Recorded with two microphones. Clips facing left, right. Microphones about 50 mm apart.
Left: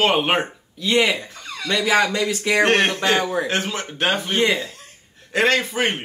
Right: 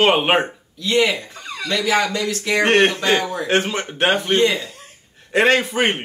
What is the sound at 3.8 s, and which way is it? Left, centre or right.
Speech, centre.